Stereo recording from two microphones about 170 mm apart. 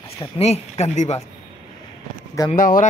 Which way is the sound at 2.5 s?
55° left (ahead or behind).